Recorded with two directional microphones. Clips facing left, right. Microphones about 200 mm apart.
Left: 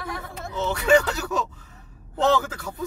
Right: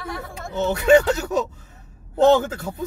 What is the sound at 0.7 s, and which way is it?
Speech, 20° right (ahead or behind).